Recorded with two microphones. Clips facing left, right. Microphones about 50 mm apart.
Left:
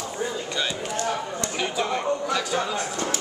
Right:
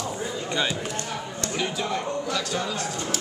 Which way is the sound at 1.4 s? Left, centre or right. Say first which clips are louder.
Left 2 dB; centre.